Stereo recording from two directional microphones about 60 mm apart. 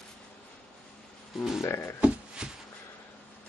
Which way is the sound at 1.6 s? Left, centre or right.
Left.